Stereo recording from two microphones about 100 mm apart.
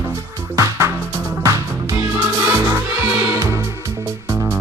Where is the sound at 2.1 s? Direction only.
20° right (ahead or behind).